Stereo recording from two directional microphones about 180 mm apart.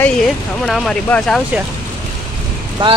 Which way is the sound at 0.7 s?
Centre (ahead or behind).